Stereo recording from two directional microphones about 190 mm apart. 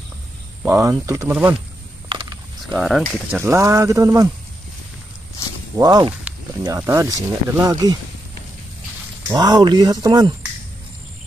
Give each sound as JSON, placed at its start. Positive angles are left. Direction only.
{"t": 0.7, "sound": "speech", "side_deg": -15}
{"t": 2.0, "sound": "mechanisms", "side_deg": -25}
{"t": 2.6, "sound": "speech", "side_deg": 0}
{"t": 5.8, "sound": "speech", "side_deg": -20}
{"t": 9.3, "sound": "speech", "side_deg": -20}